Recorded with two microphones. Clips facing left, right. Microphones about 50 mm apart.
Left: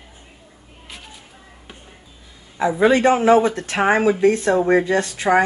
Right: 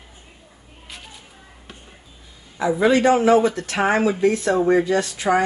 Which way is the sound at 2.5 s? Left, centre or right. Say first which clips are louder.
Left 1 dB; left.